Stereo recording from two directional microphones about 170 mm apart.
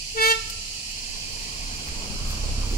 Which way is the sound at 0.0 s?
55° left (ahead or behind).